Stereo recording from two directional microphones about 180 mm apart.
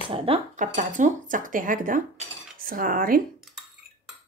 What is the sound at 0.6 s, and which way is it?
Speech, 45° right (ahead or behind).